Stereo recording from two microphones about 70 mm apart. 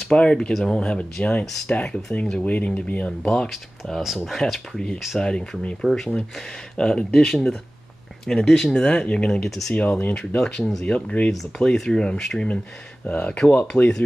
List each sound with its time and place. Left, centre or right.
0.1 s speech: centre
0.5 s speech: centre
3.4 s speech: centre
9.8 s speech: left
13.0 s speech: centre